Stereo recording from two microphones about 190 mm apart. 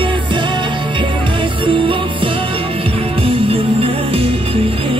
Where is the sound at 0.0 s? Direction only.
25° right (ahead or behind).